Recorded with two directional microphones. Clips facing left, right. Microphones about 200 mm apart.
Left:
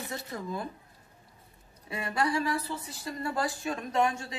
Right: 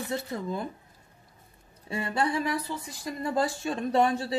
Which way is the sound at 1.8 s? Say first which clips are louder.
Right 2 dB; 30° right (ahead or behind).